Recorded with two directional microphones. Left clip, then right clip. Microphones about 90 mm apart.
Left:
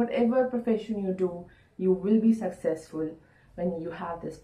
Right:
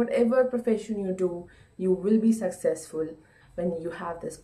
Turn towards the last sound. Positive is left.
turn(degrees=-25)  # may be behind; listen again after turning